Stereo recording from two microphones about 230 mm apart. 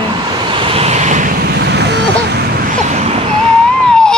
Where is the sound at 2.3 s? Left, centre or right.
Right.